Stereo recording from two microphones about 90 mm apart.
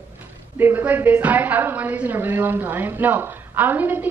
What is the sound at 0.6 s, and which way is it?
A woman's voice, 25° right (ahead or behind).